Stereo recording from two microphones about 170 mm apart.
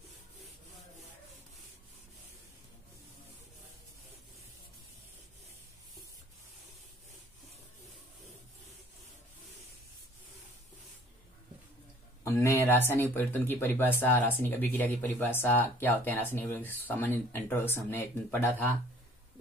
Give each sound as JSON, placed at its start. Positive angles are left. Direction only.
{"t": 12.2, "sound": "speech", "side_deg": 15}